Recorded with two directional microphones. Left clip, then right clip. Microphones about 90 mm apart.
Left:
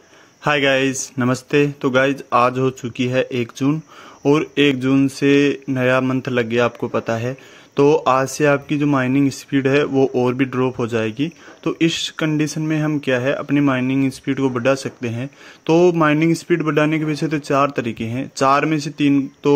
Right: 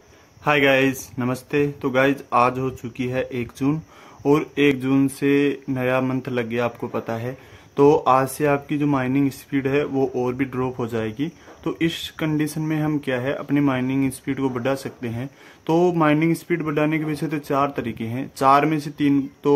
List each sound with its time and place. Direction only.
0.4 s speech: 50° left (ahead or behind); by 3.4 s 35° left (ahead or behind)
4.2 s speech: 20° left (ahead or behind)
15.6 s speech: 20° left (ahead or behind)
16.0 s speech: 30° left (ahead or behind)